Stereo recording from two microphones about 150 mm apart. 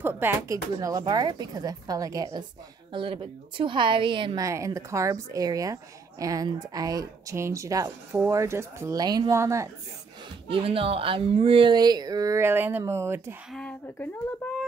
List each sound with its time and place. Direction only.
0.0 s a woman's voice: 15° right (ahead or behind); by 4.5 s 35° right (ahead or behind)
4.5 s speech: 20° right (ahead or behind)
10.5 s speech: 40° right (ahead or behind); by 13.4 s 15° right (ahead or behind)
13.5 s speech: 5° left (ahead or behind)